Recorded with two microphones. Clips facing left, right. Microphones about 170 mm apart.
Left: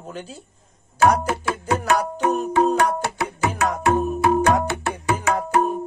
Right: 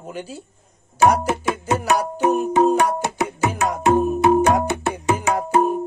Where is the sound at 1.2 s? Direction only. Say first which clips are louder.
Right 2 dB; 20° right (ahead or behind).